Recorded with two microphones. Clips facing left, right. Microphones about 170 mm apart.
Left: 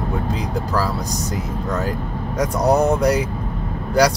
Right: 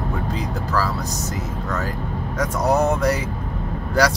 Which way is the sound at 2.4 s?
15° left (ahead or behind).